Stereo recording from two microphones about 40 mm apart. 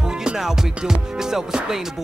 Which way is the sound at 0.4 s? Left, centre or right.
Centre.